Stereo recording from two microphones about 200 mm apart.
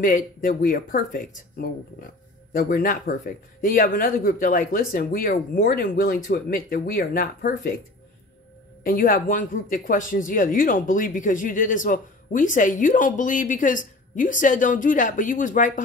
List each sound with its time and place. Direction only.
0.0 s speech: 45° left (ahead or behind)
8.8 s speech: 45° left (ahead or behind)